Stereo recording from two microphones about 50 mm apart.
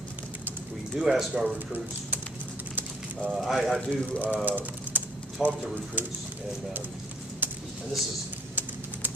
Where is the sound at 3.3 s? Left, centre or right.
Centre.